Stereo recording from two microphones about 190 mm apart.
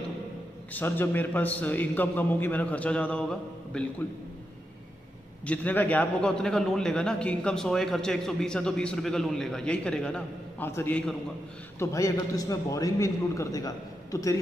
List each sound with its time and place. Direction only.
0.7 s a man's voice: 10° left (ahead or behind)
5.4 s a man's voice: 5° left (ahead or behind)